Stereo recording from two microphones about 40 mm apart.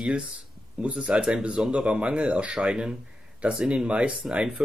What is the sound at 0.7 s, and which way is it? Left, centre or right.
Speech, right.